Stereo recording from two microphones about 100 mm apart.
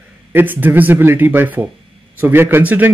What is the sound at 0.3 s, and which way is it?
Speech, 20° right (ahead or behind).